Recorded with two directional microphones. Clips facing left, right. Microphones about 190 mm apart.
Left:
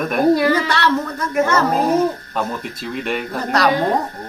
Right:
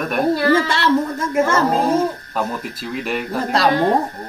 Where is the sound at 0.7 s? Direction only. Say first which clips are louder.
Right 2 dB; 25° right (ahead or behind).